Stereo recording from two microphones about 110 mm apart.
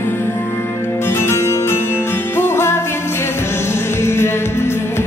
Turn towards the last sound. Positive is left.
turn(degrees=25)  # may be behind; listen again after turning